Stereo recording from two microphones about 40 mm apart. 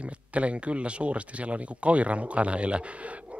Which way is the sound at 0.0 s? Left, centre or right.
Right.